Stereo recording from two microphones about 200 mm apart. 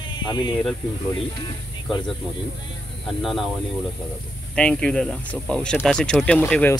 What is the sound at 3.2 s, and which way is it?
Speech, centre (ahead or behind).